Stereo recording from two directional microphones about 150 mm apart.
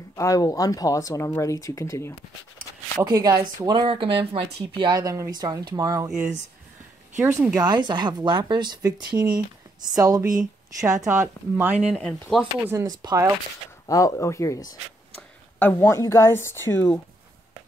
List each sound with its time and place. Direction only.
0.1 s speech: 20° left (ahead or behind)
3.0 s speech: 25° right (ahead or behind)
3.8 s speech: 40° right (ahead or behind)
4.9 s speech: 20° right (ahead or behind)
6.0 s speech: 5° right (ahead or behind)
7.6 s speech: 30° right (ahead or behind)
11.9 s speech: 5° left (ahead or behind)
12.4 s speech: 15° right (ahead or behind)
12.8 s speech: 25° right (ahead or behind)
13.8 s speech: 20° left (ahead or behind)
15.6 s speech: 15° left (ahead or behind)